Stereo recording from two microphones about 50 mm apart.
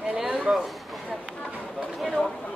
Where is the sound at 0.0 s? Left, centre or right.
Right.